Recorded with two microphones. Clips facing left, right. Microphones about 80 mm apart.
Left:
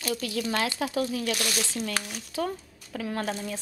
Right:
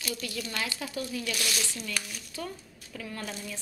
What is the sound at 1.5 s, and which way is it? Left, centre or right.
Speech, left.